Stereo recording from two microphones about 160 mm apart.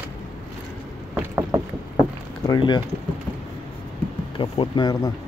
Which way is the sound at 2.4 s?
25° left (ahead or behind).